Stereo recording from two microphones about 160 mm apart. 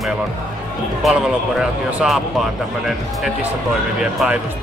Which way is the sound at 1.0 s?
5° right (ahead or behind).